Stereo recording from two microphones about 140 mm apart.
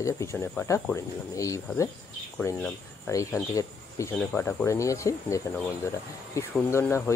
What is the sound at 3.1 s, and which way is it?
Speech, 25° left (ahead or behind).